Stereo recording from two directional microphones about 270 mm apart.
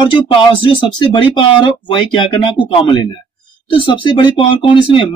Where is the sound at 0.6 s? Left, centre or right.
Centre.